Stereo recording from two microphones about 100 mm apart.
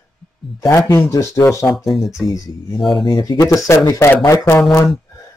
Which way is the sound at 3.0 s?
45° left (ahead or behind).